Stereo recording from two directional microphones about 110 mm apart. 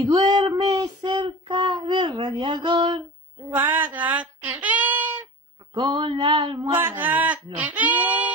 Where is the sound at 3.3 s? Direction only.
20° right (ahead or behind).